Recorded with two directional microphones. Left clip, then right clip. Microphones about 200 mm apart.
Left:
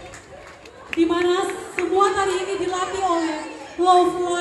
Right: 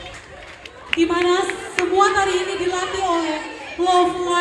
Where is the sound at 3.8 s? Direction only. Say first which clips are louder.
Left 2 dB; 35° left (ahead or behind).